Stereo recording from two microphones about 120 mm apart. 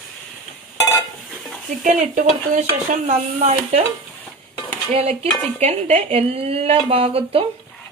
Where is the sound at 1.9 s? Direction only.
90° right.